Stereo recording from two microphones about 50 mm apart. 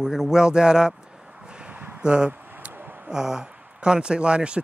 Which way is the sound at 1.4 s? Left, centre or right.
Centre.